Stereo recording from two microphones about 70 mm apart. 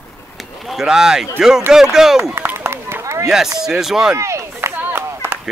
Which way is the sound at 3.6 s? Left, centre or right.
Centre.